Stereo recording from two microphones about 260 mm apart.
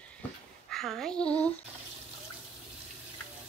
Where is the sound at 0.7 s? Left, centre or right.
Centre.